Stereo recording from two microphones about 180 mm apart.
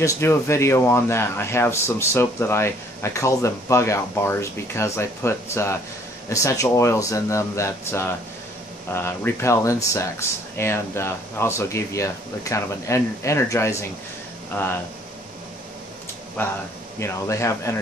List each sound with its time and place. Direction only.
0.0 s speech: 15° left (ahead or behind)
16.4 s speech: 10° left (ahead or behind)